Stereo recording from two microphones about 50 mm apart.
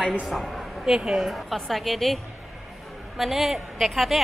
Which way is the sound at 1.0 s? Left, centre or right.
Centre.